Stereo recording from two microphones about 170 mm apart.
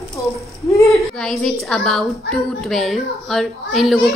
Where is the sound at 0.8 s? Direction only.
Centre (ahead or behind).